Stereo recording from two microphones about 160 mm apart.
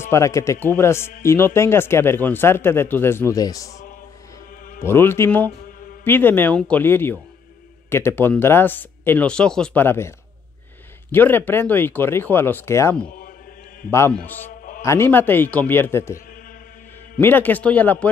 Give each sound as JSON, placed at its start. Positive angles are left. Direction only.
{"t": 0.0, "sound": "speech", "side_deg": 20}
{"t": 17.2, "sound": "speech", "side_deg": 10}